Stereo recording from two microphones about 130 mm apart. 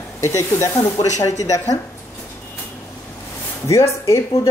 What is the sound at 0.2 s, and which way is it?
A woman's voice, 25° left (ahead or behind).